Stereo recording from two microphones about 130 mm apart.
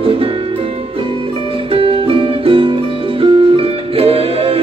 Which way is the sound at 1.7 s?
45° right (ahead or behind).